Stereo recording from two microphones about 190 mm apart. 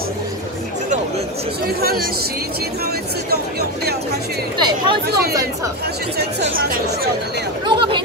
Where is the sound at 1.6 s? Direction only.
55° right (ahead or behind).